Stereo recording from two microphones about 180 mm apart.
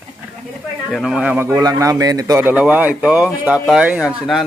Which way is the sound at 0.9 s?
Centre (ahead or behind).